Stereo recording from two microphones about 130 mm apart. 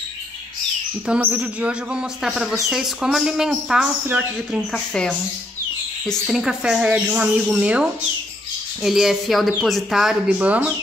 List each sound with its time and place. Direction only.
1.0 s speech: 10° right (ahead or behind)